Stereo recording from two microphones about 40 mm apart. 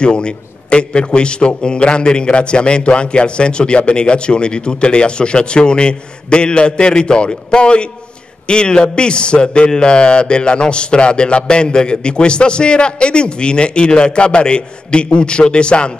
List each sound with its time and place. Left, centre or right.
0.0 s a man's voice: left